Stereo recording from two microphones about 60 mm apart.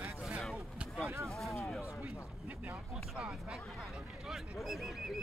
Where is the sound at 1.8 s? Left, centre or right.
Left.